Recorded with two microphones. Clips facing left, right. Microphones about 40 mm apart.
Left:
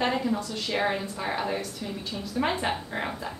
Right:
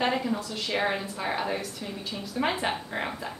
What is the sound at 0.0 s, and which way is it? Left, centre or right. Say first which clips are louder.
A woman's voice: left 1 dB; centre.